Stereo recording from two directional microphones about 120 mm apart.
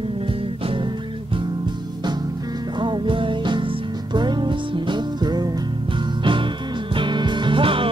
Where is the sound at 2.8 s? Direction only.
45° right (ahead or behind).